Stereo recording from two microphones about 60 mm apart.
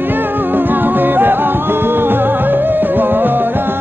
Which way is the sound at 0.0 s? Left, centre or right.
Right.